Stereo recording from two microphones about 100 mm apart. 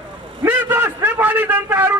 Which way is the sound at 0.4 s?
20° right (ahead or behind).